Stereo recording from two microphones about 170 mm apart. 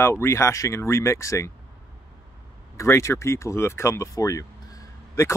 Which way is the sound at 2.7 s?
15° left (ahead or behind).